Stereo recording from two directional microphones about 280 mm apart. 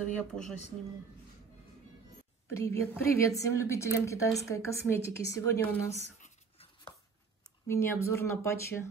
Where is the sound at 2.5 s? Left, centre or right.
Centre.